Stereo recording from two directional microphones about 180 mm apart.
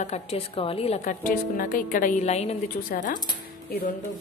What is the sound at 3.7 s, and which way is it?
Speech, 60° left (ahead or behind).